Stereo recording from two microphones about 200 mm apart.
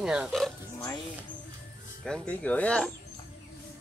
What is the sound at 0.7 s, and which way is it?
Music, 20° left (ahead or behind).